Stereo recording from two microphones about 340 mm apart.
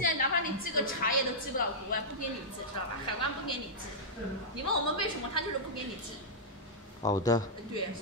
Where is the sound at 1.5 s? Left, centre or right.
Left.